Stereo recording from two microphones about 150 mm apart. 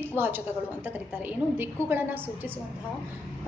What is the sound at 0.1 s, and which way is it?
A woman's voice, 15° right (ahead or behind).